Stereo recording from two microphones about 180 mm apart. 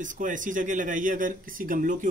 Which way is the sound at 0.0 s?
45° right (ahead or behind).